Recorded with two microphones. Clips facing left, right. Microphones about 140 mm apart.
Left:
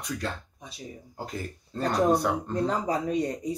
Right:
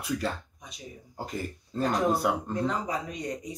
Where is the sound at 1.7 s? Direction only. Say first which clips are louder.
Right 1 dB; centre (ahead or behind).